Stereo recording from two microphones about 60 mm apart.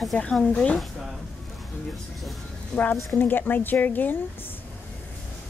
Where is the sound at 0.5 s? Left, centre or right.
Left.